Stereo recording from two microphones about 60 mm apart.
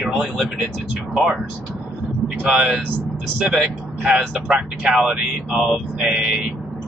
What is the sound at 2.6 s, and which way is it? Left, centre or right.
Speech, centre.